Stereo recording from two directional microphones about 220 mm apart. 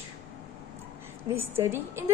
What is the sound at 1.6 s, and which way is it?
Speech, 10° right (ahead or behind).